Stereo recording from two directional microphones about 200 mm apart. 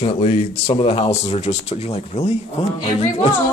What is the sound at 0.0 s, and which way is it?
A woman's voice, 30° left (ahead or behind).